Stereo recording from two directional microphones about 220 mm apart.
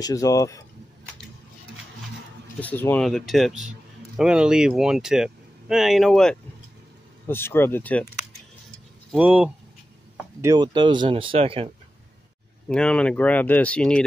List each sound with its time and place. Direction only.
0.0 s speech: 15° left (ahead or behind)
2.6 s speech: 10° left (ahead or behind)
9.1 s speech: 5° right (ahead or behind)
10.4 s speech: 15° right (ahead or behind)
12.6 s speech: 5° left (ahead or behind)